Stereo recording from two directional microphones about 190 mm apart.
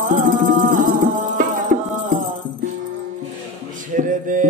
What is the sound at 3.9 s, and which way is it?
Mantra, 45° right (ahead or behind).